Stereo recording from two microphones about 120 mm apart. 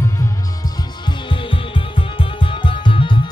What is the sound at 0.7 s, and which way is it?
Music, 45° left (ahead or behind).